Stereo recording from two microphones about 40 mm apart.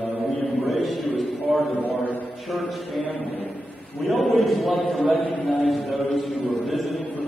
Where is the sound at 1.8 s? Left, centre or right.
Left.